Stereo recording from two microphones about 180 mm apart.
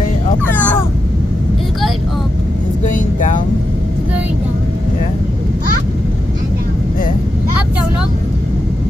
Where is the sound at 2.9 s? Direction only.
45° left (ahead or behind).